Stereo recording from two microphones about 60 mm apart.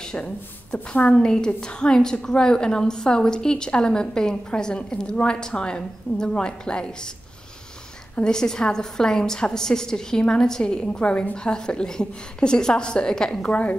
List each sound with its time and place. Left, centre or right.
0.1 s speech: left
1.1 s a woman's voice: centre
8.2 s a woman's voice: centre
13.5 s speech: left